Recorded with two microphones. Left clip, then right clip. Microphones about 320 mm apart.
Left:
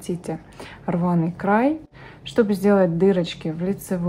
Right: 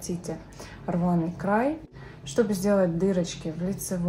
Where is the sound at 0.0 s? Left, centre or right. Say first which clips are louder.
Left 5 dB; left.